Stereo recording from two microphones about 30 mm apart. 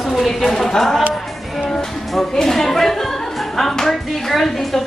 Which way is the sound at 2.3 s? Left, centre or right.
Centre.